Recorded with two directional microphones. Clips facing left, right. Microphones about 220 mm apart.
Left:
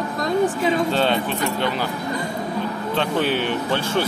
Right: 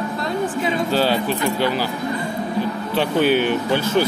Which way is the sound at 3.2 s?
30° left (ahead or behind).